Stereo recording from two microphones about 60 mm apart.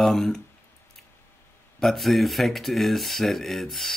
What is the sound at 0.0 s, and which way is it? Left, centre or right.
Speech, centre.